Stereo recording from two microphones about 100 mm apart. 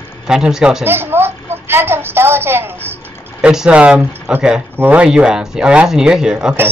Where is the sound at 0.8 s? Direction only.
20° right (ahead or behind).